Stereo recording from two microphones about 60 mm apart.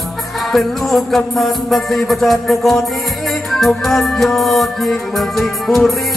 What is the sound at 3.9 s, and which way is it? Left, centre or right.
Music, centre.